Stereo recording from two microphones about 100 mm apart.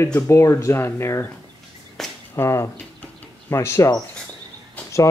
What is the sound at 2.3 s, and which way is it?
Speech, 25° left (ahead or behind).